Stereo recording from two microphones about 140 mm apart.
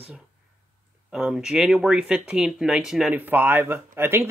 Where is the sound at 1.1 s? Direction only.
5° right (ahead or behind).